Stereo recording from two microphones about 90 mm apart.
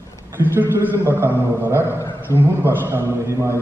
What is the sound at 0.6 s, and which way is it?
A man's voice, 25° right (ahead or behind).